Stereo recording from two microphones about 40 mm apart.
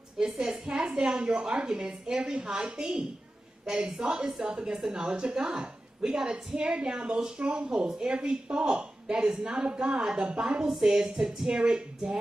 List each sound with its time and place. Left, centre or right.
0.3 s a woman's voice: centre
0.7 s a woman's voice: right
2.8 s speech: right
3.6 s a woman's voice: centre
6.2 s a woman's voice: right